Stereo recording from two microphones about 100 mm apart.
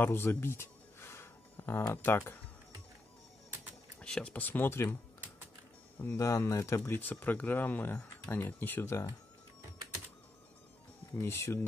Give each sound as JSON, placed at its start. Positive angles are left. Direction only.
{"t": 0.0, "sound": "a sound", "side_deg": 20}
{"t": 2.0, "sound": "speech", "side_deg": 20}
{"t": 4.0, "sound": "speech", "side_deg": 10}
{"t": 6.1, "sound": "speech", "side_deg": 30}
{"t": 11.1, "sound": "speech", "side_deg": 25}